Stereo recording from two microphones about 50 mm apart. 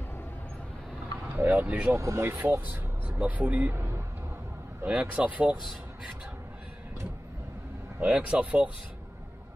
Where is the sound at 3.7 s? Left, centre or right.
Right.